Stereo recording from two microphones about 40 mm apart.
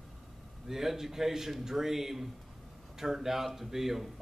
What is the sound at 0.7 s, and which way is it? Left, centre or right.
Speech, centre.